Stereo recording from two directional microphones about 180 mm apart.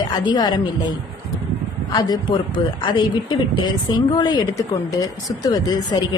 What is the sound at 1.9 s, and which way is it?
A man's voice, 25° left (ahead or behind).